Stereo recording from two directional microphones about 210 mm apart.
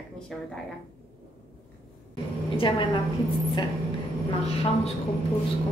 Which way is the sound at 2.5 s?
25° left (ahead or behind).